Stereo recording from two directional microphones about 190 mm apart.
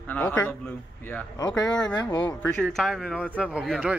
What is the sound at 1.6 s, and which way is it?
Speech, 20° left (ahead or behind).